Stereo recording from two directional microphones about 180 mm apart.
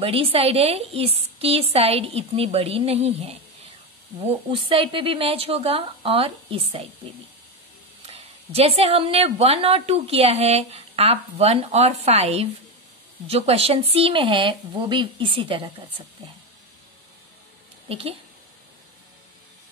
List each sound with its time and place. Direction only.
0.0 s a woman's voice: 30° right (ahead or behind)
8.1 s a woman's voice: 35° right (ahead or behind)
17.8 s speech: 30° right (ahead or behind)